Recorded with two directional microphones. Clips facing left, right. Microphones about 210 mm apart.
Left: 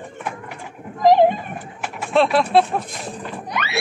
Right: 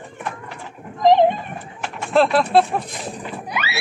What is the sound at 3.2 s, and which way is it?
Music, 5° right (ahead or behind).